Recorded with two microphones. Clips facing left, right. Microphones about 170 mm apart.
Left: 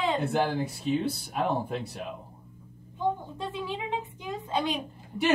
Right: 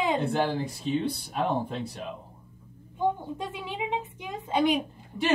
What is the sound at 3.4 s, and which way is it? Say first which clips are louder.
A woman's voice: even; 20° right (ahead or behind).